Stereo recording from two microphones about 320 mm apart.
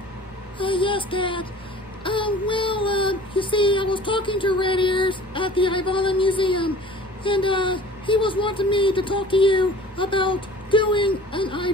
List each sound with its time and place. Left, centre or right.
0.6 s speech: centre